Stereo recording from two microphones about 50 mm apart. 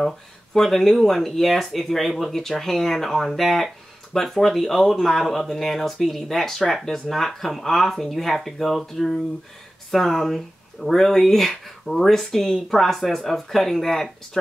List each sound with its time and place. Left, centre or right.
0.6 s speech: centre